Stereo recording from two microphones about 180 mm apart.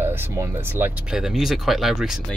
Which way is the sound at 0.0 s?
10° right (ahead or behind).